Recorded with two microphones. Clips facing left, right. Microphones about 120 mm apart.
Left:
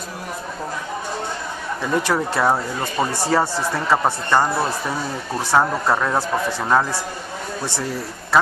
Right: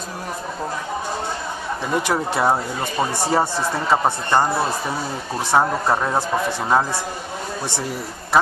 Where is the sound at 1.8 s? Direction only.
15° right (ahead or behind).